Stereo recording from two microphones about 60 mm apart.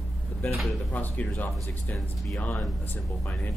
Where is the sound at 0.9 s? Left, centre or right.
Left.